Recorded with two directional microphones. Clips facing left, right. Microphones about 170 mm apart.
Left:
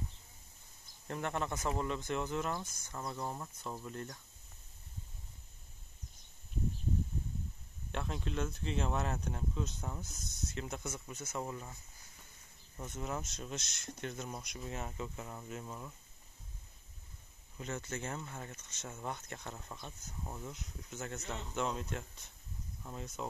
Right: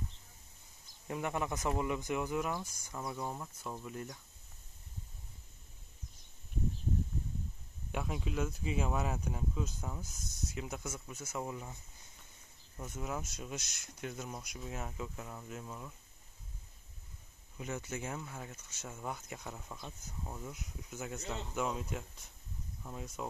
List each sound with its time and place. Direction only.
1.0 s speech: 10° right (ahead or behind)
7.9 s speech: 5° right (ahead or behind)
12.7 s speech: 5° right (ahead or behind)
17.6 s speech: 10° right (ahead or behind)